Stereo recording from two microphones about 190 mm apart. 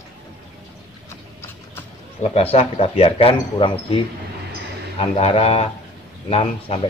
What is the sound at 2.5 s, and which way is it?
Speech, 30° left (ahead or behind).